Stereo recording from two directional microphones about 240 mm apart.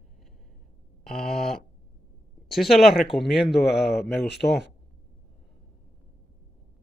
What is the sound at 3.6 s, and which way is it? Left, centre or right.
Speech, left.